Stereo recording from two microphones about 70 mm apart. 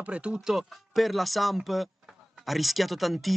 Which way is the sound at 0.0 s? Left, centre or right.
Centre.